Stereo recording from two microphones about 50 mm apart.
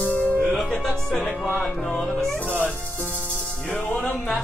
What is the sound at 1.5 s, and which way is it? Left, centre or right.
Music, left.